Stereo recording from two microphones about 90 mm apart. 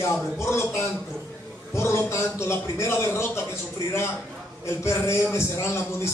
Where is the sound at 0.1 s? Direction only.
30° left (ahead or behind).